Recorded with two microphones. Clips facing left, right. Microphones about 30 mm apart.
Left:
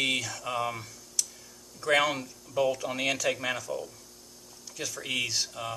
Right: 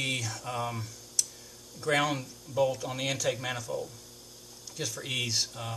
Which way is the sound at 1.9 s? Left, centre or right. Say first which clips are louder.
Left 3 dB; centre.